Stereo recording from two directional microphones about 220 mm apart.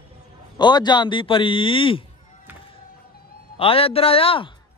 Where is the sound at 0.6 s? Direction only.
20° left (ahead or behind).